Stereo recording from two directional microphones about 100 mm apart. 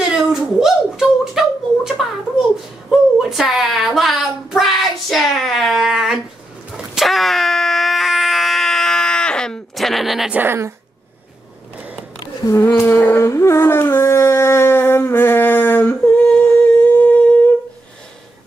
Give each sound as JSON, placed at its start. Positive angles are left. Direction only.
{"t": 0.1, "sound": "a sound", "side_deg": -5}
{"t": 10.3, "sound": "speech", "side_deg": -20}
{"t": 12.4, "sound": "humming", "side_deg": 30}